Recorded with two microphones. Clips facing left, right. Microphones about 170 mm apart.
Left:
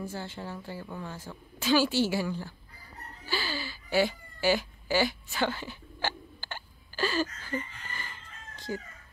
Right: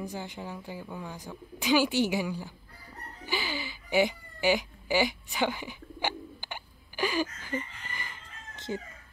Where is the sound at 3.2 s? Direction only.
15° right (ahead or behind).